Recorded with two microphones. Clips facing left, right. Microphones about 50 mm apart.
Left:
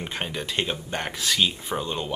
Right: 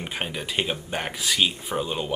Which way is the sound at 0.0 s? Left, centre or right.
Centre.